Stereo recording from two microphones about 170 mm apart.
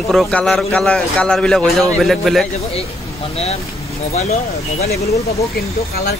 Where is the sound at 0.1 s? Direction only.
5° left (ahead or behind).